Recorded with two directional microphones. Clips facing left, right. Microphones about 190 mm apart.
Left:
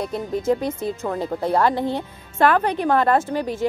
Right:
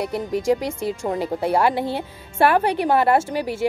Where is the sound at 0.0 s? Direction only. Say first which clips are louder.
Right 1 dB; 70° right (ahead or behind).